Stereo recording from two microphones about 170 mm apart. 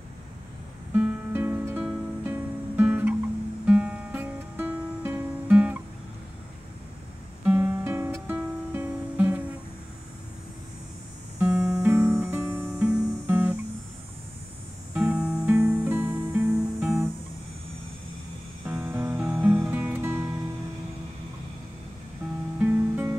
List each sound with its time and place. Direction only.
0.9 s music: 10° right (ahead or behind)
7.4 s music: 10° right (ahead or behind)
11.7 s music: 15° right (ahead or behind)
13.3 s guitar: 10° right (ahead or behind)
15.0 s music: 5° right (ahead or behind)
18.7 s music: 10° right (ahead or behind)
22.6 s music: 10° right (ahead or behind)